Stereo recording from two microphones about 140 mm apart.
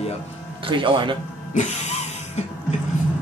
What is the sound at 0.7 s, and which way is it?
Speech, 35° right (ahead or behind).